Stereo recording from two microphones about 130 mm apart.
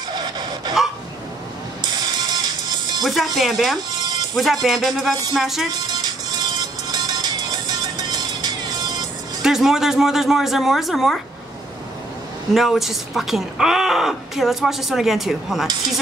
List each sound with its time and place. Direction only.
0.1 s a sound: 35° right (ahead or behind)
1.8 s music: 30° right (ahead or behind)
3.0 s speech: centre (ahead or behind)
5.9 s music: 35° right (ahead or behind)
9.4 s speech: 5° right (ahead or behind)
12.5 s speech: centre (ahead or behind)